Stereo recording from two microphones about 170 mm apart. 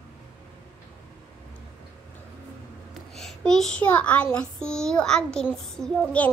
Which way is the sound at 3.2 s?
Centre (ahead or behind).